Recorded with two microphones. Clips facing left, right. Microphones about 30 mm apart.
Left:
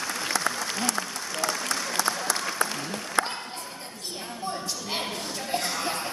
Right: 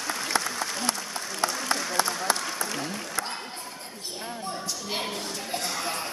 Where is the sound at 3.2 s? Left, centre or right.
Left.